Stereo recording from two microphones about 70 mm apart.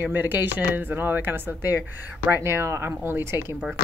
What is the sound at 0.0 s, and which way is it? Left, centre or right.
Speech, right.